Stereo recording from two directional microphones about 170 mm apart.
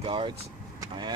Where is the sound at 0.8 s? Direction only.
25° right (ahead or behind).